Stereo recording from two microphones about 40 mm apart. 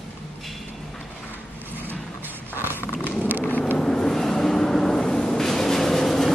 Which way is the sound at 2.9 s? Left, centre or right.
Left.